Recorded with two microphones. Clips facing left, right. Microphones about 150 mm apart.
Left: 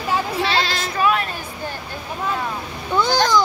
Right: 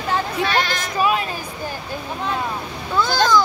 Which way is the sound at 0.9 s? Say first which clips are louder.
Even; 20° right (ahead or behind).